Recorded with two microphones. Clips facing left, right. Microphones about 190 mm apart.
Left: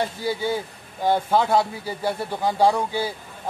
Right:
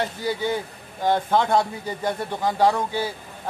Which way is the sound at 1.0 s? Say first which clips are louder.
Even; 10° left (ahead or behind).